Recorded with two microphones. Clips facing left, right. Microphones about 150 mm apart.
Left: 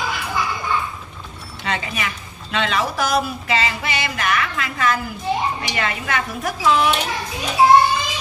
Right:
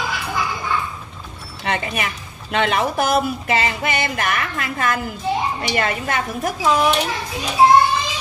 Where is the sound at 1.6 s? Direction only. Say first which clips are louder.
Right 2 dB; 55° right (ahead or behind).